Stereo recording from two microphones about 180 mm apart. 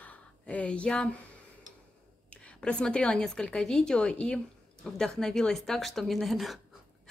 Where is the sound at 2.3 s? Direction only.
5° left (ahead or behind).